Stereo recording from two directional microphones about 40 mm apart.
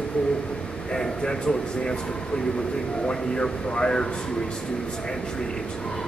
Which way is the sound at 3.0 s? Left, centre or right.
Left.